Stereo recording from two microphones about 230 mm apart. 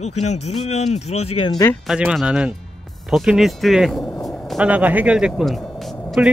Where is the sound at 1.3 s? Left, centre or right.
Centre.